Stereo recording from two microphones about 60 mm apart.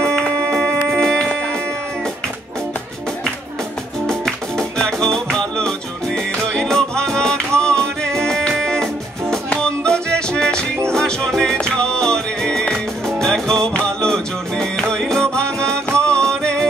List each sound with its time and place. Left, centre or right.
0.0 s a sound: centre
0.9 s music: centre
4.7 s music: centre